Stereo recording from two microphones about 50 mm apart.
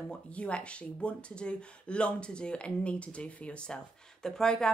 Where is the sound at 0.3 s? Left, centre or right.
Left.